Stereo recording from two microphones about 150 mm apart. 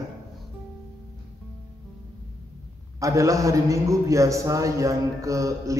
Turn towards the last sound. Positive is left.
turn(degrees=-20)  # may be behind; listen again after turning